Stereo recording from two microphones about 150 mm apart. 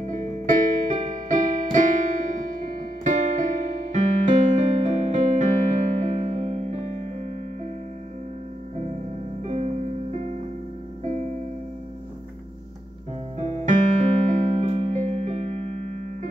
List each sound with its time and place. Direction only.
0.5 s music: 55° right (ahead or behind)
9.4 s music: 45° right (ahead or behind)
13.4 s keyboard: 45° right (ahead or behind)